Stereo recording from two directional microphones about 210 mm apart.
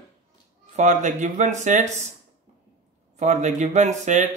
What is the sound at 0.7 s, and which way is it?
Speech, 35° right (ahead or behind).